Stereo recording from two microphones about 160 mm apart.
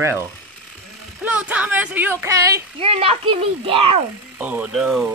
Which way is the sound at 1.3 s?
10° right (ahead or behind).